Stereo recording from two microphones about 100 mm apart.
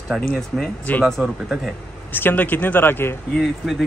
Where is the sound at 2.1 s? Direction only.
20° left (ahead or behind).